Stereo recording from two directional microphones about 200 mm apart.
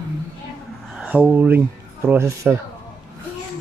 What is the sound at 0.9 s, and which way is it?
Speech, 5° right (ahead or behind).